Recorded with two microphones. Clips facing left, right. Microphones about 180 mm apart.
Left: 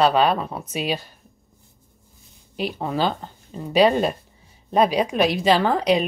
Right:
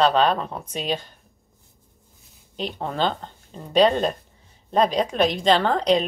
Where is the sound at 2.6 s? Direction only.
5° left (ahead or behind).